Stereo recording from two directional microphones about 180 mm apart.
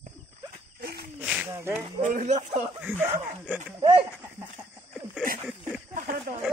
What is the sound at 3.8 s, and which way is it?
Speech, 25° right (ahead or behind).